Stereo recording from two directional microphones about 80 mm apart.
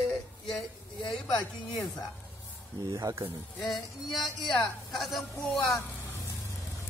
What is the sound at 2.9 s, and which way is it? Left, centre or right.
Speech, right.